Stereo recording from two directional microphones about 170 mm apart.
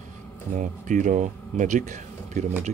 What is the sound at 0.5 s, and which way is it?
Speech, 45° right (ahead or behind).